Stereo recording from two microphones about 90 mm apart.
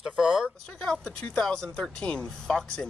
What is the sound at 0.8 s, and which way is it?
Speech, 10° left (ahead or behind).